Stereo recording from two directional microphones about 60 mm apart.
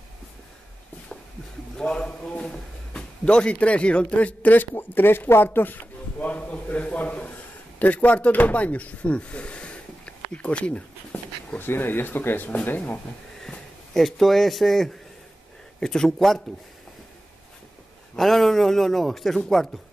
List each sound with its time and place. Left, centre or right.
1.8 s a man's voice: centre
11.6 s speech: left
13.4 s a man's voice: centre
18.1 s a man's voice: centre